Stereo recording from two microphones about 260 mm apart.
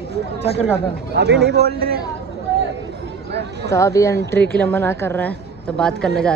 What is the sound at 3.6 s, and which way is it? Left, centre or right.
A woman's voice, centre.